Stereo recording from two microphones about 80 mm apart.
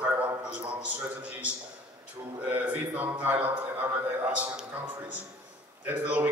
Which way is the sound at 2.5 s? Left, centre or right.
Centre.